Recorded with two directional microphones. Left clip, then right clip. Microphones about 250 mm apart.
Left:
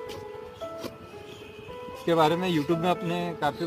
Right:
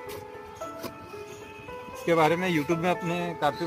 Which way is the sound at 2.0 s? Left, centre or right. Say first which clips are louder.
Even; centre.